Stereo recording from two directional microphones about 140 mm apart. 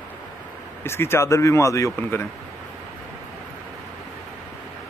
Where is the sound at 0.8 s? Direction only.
15° left (ahead or behind).